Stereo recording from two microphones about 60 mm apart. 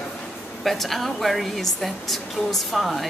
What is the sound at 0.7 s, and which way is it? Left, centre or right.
A woman's voice, centre.